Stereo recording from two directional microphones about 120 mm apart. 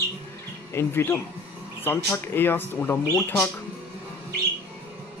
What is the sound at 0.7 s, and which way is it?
Speech, 20° left (ahead or behind).